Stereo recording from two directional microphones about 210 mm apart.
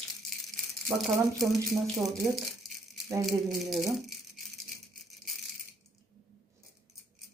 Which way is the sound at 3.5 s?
Centre (ahead or behind).